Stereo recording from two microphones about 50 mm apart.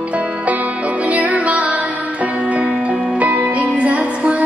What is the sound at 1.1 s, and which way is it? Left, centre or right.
Music, right.